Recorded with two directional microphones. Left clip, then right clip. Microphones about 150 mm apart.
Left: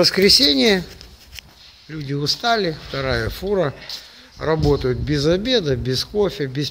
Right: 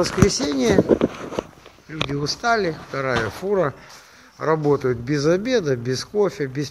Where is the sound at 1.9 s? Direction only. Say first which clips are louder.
Left 1 dB; 25° left (ahead or behind).